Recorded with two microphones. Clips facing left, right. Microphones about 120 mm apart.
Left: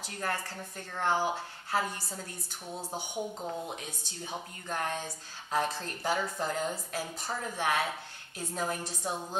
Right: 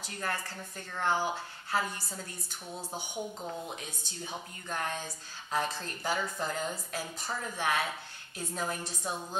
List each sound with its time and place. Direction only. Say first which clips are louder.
0.2 s a woman's voice: left 2 dB; 35° left (ahead or behind)
3.3 s a woman's voice: left 2 dB; 20° left (ahead or behind)
4.3 s a woman's voice: left 2 dB; 35° left (ahead or behind)